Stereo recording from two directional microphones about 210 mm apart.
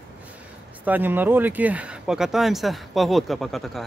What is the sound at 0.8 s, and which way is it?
Speech, 10° right (ahead or behind).